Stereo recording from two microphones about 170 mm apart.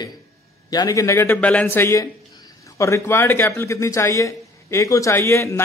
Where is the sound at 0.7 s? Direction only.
20° left (ahead or behind).